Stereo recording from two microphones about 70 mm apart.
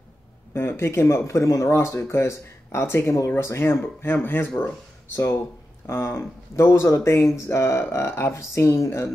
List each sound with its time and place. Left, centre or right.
0.5 s speech: left
5.1 s speech: left